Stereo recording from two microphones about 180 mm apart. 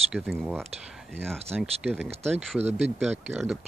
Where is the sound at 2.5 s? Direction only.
35° right (ahead or behind).